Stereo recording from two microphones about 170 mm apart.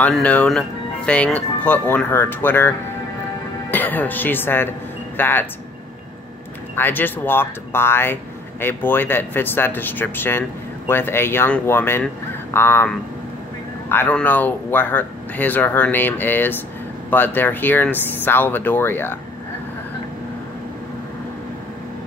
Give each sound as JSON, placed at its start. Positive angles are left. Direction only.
{"t": 0.0, "sound": "speech", "side_deg": 10}
{"t": 3.7, "sound": "speech", "side_deg": 10}
{"t": 6.7, "sound": "speech", "side_deg": 10}